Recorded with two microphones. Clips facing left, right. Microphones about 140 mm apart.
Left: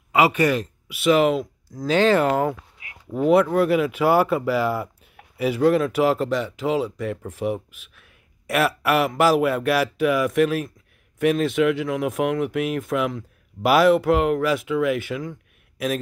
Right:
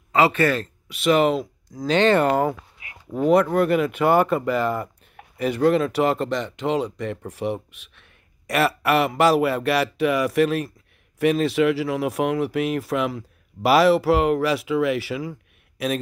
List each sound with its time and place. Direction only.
0.1 s speech: 10° left (ahead or behind)